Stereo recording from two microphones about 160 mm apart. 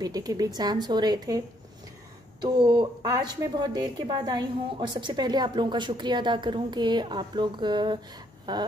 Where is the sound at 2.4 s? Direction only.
30° right (ahead or behind).